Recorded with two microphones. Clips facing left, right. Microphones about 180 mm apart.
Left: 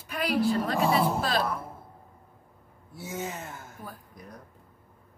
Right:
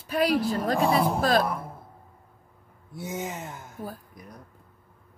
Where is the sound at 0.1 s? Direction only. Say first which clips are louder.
Right 2 dB; 40° right (ahead or behind).